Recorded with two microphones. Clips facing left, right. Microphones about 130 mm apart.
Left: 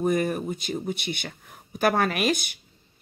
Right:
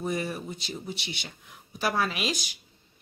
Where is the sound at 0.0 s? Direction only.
50° left (ahead or behind).